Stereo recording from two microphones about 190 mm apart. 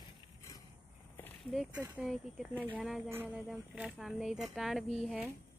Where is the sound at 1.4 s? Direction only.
Centre (ahead or behind).